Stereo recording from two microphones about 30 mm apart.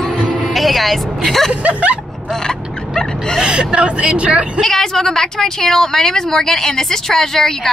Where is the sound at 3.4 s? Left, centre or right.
Right.